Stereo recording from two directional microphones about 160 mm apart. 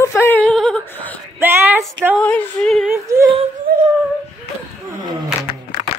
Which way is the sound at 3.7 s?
70° right (ahead or behind).